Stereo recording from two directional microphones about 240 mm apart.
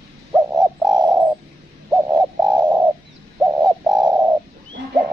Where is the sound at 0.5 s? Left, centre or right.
Centre.